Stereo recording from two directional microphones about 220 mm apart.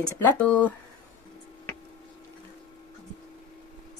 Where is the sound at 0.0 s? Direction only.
5° left (ahead or behind).